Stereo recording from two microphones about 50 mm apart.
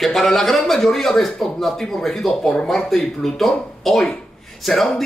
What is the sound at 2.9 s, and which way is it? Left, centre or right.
Speech, centre.